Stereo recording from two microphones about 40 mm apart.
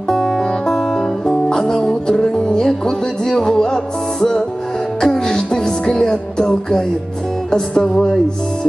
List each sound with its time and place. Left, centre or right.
0.1 s music: centre